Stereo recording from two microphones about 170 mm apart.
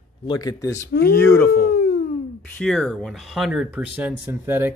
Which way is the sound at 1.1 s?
15° left (ahead or behind).